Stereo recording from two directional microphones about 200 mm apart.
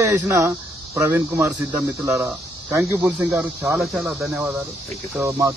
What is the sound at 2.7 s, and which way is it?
Speech, 10° right (ahead or behind).